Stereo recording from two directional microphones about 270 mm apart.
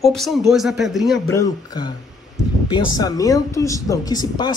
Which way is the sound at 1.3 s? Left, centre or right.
Centre.